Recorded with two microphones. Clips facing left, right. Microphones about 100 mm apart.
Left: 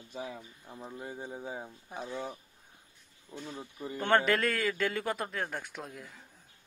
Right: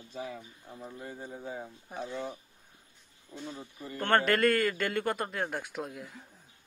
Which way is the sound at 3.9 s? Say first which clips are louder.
Even; 5° left (ahead or behind).